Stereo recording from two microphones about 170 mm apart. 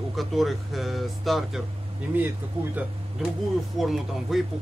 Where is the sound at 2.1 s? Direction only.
10° right (ahead or behind).